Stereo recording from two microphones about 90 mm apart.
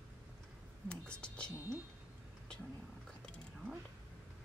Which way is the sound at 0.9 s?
10° left (ahead or behind).